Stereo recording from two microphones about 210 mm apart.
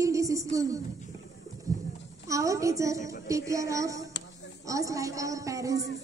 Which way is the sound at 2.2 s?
15° right (ahead or behind).